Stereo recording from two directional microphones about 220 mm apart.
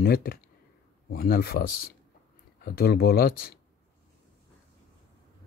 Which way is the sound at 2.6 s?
45° left (ahead or behind).